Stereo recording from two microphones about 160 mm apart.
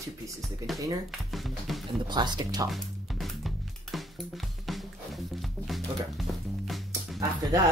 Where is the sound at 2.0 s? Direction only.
25° right (ahead or behind).